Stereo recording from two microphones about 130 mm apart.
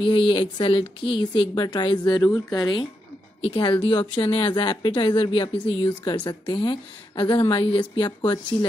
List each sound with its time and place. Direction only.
0.0 s a woman's voice: 40° left (ahead or behind)